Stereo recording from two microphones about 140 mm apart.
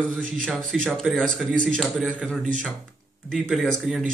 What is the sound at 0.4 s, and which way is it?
A man's voice, 5° left (ahead or behind).